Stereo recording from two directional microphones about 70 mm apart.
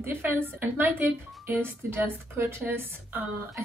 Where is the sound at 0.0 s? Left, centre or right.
Right.